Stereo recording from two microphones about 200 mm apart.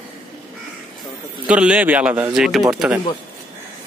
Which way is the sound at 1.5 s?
5° right (ahead or behind).